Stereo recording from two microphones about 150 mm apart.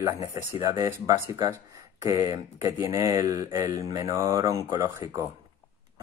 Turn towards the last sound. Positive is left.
turn(degrees=-20)  # may be behind; listen again after turning